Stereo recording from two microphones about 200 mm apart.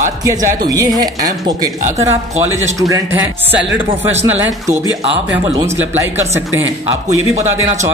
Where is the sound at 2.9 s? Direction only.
10° right (ahead or behind).